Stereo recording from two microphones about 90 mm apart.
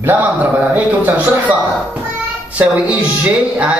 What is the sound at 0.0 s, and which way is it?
A man's voice, 20° right (ahead or behind).